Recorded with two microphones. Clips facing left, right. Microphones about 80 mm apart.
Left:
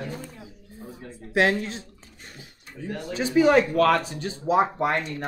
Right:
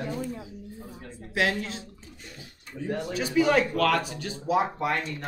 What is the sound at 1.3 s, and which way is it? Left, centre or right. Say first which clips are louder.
Speech: left 5 dB; left.